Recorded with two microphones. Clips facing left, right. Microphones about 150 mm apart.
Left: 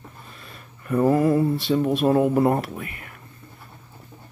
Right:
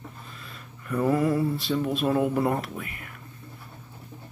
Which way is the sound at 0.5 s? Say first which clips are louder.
Left 6 dB; 50° left (ahead or behind).